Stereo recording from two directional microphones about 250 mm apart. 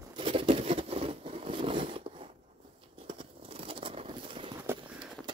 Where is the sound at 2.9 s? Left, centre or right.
Right.